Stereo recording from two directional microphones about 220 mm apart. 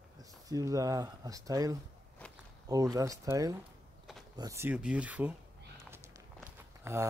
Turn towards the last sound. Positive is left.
turn(degrees=-10)  # may be behind; listen again after turning